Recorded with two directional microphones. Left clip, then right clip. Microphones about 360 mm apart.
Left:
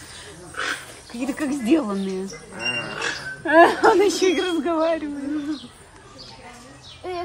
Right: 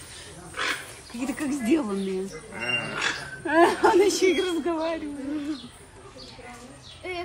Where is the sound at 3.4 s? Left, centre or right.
Left.